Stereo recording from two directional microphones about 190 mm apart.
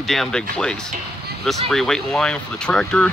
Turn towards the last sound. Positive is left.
turn(degrees=5)  # may be behind; listen again after turning